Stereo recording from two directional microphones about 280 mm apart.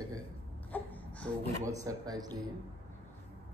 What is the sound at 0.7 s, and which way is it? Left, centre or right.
Baby cry, centre.